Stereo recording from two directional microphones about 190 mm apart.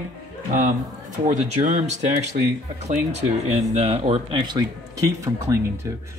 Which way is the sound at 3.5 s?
35° right (ahead or behind).